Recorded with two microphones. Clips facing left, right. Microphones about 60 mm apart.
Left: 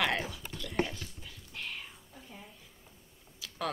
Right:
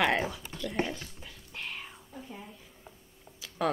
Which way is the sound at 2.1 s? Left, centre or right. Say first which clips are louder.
Right 8 dB; right.